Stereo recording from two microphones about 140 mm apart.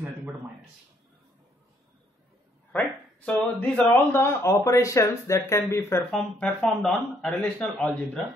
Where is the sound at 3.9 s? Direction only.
15° left (ahead or behind).